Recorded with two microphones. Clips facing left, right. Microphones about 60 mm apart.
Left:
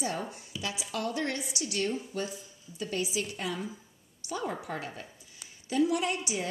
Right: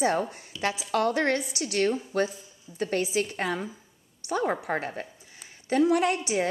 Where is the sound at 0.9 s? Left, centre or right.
Right.